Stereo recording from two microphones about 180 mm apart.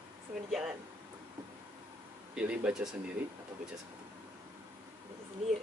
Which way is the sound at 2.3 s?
5° right (ahead or behind).